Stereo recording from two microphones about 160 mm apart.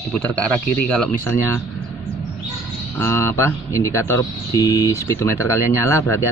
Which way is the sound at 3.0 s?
15° left (ahead or behind).